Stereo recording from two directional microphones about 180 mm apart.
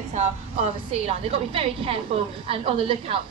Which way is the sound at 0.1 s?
35° right (ahead or behind).